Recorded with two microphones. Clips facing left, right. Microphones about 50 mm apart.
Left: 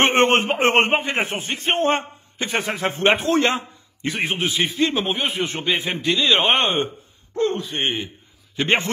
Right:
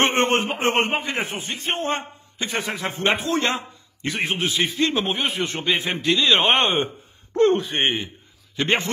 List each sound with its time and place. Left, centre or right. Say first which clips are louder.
0.1 s a man's voice: left 4 dB; left
4.0 s a man's voice: left 1 dB; centre
7.5 s speech: right 4 dB; right
8.5 s a man's voice: left 2 dB; left